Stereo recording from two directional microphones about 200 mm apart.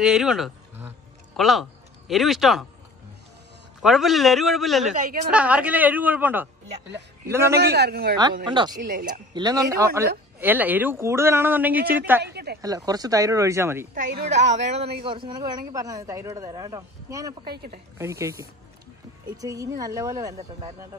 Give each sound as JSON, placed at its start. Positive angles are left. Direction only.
{"t": 0.0, "sound": "speech", "side_deg": -5}
{"t": 3.8, "sound": "a man's voice", "side_deg": 0}
{"t": 7.5, "sound": "a man's voice", "side_deg": -55}
{"t": 8.5, "sound": "a man's voice", "side_deg": -25}
{"t": 8.7, "sound": "a man's voice", "side_deg": -40}
{"t": 9.3, "sound": "speech", "side_deg": -20}
{"t": 12.2, "sound": "speech", "side_deg": -55}
{"t": 12.6, "sound": "speech", "side_deg": -20}
{"t": 13.9, "sound": "a woman's voice", "side_deg": -35}
{"t": 17.5, "sound": "a man's voice", "side_deg": -50}
{"t": 17.9, "sound": "speech", "side_deg": -15}